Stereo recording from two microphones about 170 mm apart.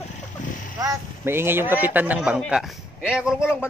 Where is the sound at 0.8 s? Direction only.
15° right (ahead or behind).